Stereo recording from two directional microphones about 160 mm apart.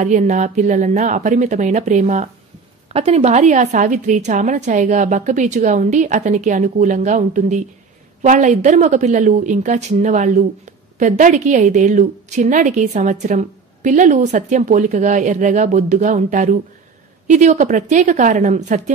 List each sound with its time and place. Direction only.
0.0 s a woman's voice: 50° right (ahead or behind)